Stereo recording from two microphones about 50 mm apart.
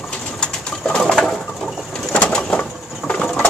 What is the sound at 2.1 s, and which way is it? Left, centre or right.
Bird, centre.